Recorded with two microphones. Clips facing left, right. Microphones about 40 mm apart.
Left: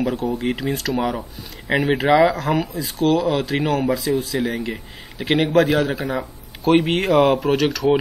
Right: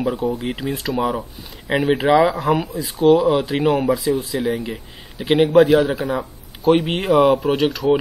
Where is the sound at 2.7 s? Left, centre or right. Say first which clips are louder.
Right 4 dB; centre.